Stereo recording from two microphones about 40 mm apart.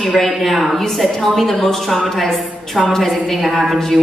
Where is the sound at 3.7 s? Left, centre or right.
Centre.